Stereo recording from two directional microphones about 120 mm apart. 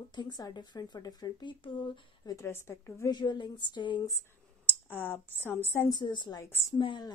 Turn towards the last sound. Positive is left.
turn(degrees=40)  # may be behind; listen again after turning